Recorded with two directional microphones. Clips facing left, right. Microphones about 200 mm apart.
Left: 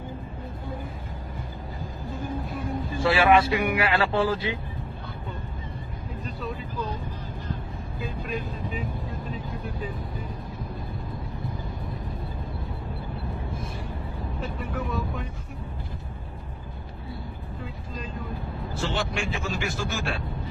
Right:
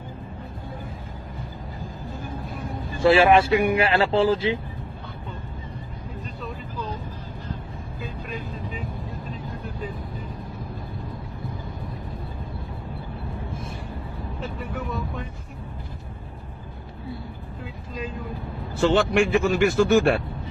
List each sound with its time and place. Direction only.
3.0 s speech: 25° right (ahead or behind)
14.4 s speech: centre (ahead or behind)
18.8 s speech: 60° right (ahead or behind)